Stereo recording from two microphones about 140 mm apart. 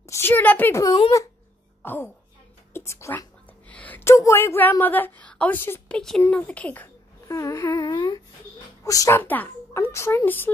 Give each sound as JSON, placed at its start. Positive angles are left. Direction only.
{"t": 0.0, "sound": "a woman's voice", "side_deg": 20}